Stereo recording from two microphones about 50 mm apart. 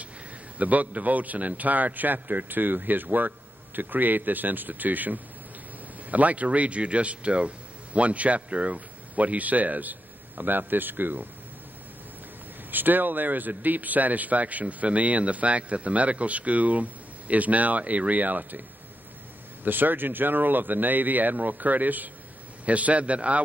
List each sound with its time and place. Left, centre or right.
0.6 s speech: right
12.7 s speech: right
19.6 s a man's voice: right